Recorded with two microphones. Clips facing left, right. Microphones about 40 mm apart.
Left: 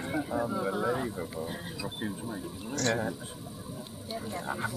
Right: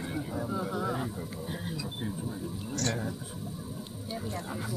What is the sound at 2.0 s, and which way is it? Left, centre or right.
Speech, left.